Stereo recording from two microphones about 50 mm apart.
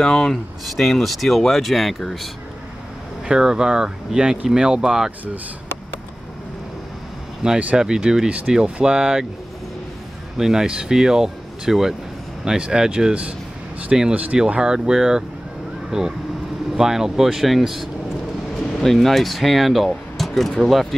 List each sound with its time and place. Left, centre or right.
0.0 s speech: centre
3.3 s speech: centre
7.4 s speech: centre
8.3 s speech: right
10.3 s speech: centre